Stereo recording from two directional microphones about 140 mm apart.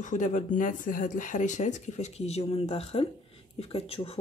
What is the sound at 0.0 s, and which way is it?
Speech, 60° left (ahead or behind).